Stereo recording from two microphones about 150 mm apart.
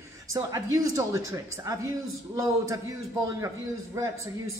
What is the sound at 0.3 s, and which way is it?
A man's voice, 20° right (ahead or behind).